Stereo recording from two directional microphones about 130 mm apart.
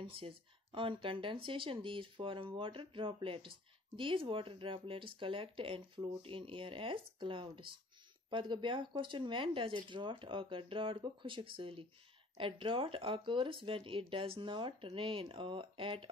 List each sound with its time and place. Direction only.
0.0 s speech: 45° right (ahead or behind)